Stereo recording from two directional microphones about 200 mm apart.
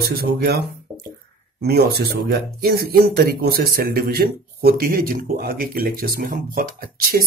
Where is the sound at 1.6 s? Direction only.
55° right (ahead or behind).